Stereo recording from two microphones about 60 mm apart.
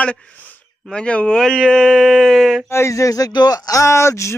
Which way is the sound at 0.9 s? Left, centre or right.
Centre.